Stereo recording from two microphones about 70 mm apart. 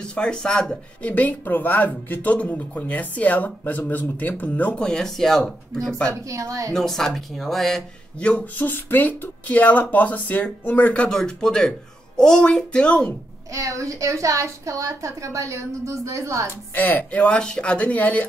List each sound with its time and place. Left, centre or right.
0.0 s speech: centre
1.1 s speech: left
4.8 s speech: centre
6.2 s a woman's voice: right
6.7 s speech: centre
8.2 s speech: centre
11.1 s speech: centre
13.5 s a woman's voice: right
16.7 s speech: left